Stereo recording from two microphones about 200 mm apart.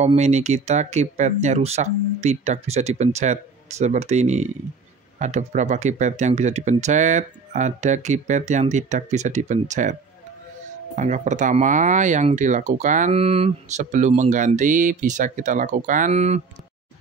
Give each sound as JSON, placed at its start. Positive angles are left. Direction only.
{"t": 0.0, "sound": "speech", "side_deg": -35}
{"t": 11.0, "sound": "speech", "side_deg": -35}